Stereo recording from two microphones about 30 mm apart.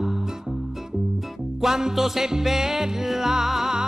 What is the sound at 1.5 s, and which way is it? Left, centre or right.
Music, centre.